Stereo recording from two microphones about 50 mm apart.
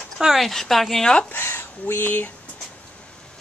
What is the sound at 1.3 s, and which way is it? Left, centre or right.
Speech, left.